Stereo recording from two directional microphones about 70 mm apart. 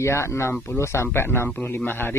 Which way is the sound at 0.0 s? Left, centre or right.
Left.